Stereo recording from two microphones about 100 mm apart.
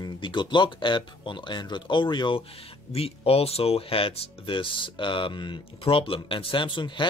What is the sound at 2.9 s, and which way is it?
Speech, 85° left.